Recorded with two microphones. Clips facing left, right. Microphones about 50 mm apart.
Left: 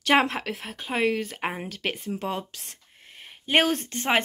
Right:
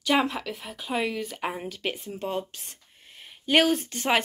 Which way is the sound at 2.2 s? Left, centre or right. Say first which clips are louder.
Even; left.